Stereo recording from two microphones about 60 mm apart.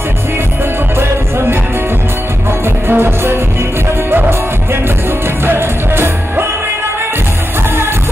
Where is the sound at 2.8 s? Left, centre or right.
Right.